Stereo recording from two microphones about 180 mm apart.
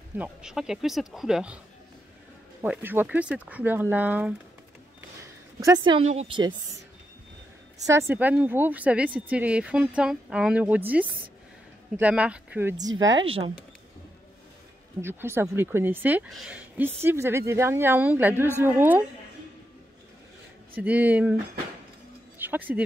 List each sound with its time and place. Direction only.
0.2 s speech: 5° right (ahead or behind)
2.6 s speech: 10° right (ahead or behind)
5.6 s a woman's voice: 25° right (ahead or behind)
7.8 s speech: 15° right (ahead or behind)
13.0 s speech: 90° right
15.0 s speech: 15° right (ahead or behind)
20.7 s speech: 10° right (ahead or behind)
22.4 s speech: 10° right (ahead or behind)